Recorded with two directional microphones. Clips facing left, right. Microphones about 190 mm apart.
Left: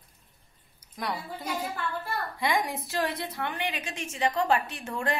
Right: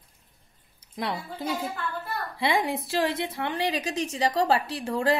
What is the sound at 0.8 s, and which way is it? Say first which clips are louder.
A woman's voice: right 2 dB; 25° right (ahead or behind).